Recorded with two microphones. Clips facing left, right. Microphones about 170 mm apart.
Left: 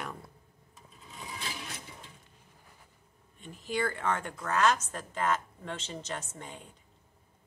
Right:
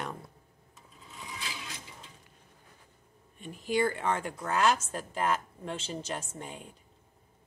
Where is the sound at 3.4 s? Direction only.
20° right (ahead or behind).